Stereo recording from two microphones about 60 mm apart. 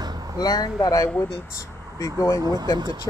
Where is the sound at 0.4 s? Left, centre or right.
Left.